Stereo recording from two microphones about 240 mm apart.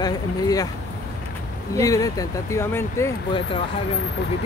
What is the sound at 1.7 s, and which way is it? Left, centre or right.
Speech, centre.